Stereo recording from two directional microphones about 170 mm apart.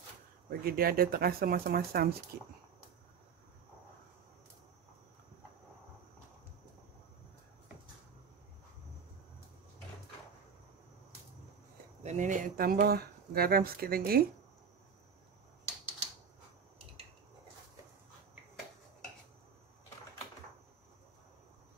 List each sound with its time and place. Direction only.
0.5 s speech: 60° right (ahead or behind)
12.0 s speech: 45° right (ahead or behind); by 14.2 s 60° right (ahead or behind)